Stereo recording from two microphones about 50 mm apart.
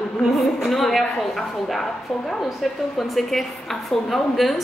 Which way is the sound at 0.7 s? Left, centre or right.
Centre.